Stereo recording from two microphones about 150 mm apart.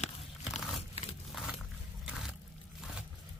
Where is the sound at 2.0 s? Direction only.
5° right (ahead or behind).